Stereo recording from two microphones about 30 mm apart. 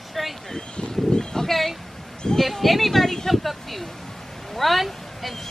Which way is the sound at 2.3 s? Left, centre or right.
Centre.